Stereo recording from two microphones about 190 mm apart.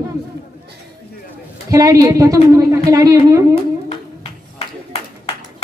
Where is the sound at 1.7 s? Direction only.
15° right (ahead or behind).